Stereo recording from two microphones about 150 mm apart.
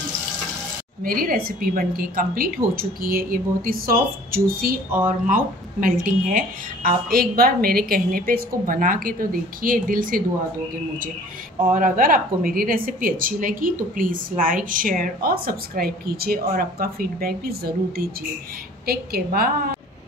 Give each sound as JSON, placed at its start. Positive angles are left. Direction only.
{"t": 1.0, "sound": "a woman's voice", "side_deg": -75}
{"t": 5.0, "sound": "a woman's voice", "side_deg": -65}
{"t": 11.7, "sound": "a woman's voice", "side_deg": -60}